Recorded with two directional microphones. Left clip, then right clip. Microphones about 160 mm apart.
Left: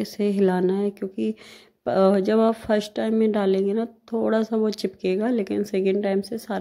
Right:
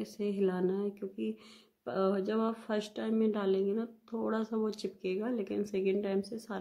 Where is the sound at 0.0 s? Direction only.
35° left (ahead or behind).